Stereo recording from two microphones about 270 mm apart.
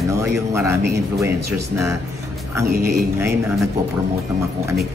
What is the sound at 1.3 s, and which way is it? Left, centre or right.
Speech, right.